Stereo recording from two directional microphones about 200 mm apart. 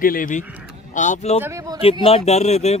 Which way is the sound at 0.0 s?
45° left (ahead or behind).